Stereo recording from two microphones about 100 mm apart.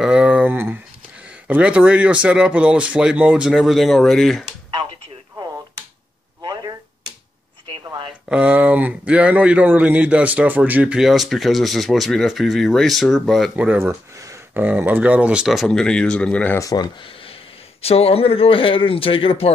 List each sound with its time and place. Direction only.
0.0 s a sound: 10° right (ahead or behind)
1.5 s speech: 15° right (ahead or behind); by 4.5 s 5° left (ahead or behind)
6.4 s chop: 40° right (ahead or behind)
8.3 s speech: 15° right (ahead or behind)
13.7 s speech: 30° right (ahead or behind)
14.5 s speech: 20° right (ahead or behind)
15.4 s speech: centre (ahead or behind)
16.5 s speech: 40° left (ahead or behind)
17.0 s a sound: 65° left (ahead or behind)
17.8 s speech: 80° left